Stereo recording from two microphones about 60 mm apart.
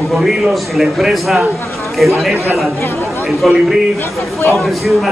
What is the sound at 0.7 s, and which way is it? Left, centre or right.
Speech, centre.